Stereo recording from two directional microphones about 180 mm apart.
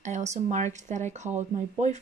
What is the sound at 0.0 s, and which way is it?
A woman's voice, 40° right (ahead or behind).